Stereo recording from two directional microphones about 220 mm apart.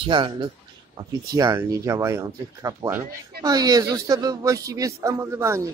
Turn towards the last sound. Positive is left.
turn(degrees=-10)  # may be behind; listen again after turning